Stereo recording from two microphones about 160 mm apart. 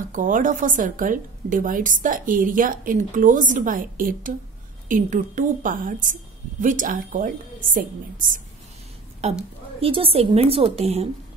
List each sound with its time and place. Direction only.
0.1 s a woman's voice: 55° right (ahead or behind)
9.8 s a woman's voice: 35° right (ahead or behind)